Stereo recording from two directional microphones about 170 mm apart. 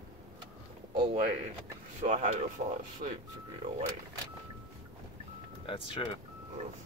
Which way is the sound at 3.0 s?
55° right (ahead or behind).